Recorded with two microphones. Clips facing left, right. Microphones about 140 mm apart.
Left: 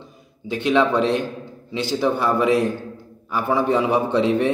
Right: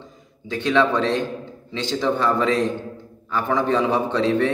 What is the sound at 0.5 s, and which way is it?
A man's voice, 15° left (ahead or behind).